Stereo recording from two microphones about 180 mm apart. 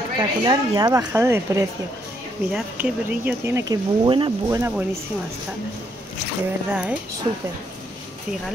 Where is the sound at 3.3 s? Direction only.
15° right (ahead or behind).